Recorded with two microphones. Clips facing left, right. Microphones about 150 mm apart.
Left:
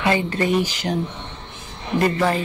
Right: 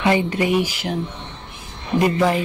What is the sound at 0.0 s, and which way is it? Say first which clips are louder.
Speech: right 2 dB; 20° right (ahead or behind).